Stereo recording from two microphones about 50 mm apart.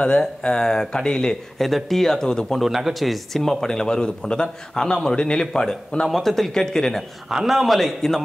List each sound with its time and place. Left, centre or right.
0.4 s speech: centre
2.6 s speech: centre
6.0 s speech: centre
7.2 s speech: centre